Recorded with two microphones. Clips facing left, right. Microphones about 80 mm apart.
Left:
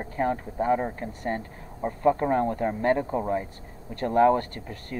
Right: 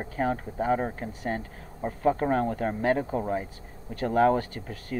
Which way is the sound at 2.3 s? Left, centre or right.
Centre.